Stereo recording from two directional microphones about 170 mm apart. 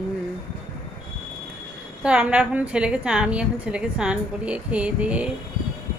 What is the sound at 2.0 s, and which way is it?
A woman's voice, 5° right (ahead or behind).